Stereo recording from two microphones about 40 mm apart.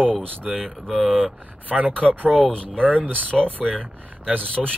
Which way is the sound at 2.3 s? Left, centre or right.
Left.